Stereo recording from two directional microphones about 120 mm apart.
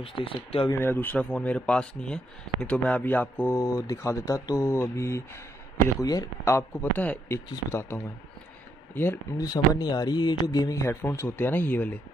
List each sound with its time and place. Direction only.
0.0 s speech: 50° left (ahead or behind)
0.7 s speech: 15° left (ahead or behind)
9.4 s speech: 35° left (ahead or behind); by 12.0 s 15° left (ahead or behind)